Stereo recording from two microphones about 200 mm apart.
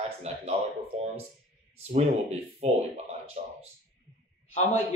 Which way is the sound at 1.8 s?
30° right (ahead or behind).